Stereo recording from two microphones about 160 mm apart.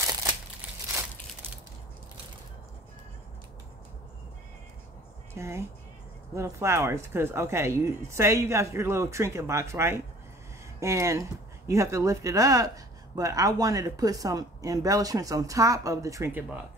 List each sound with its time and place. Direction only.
5.3 s speech: 15° right (ahead or behind)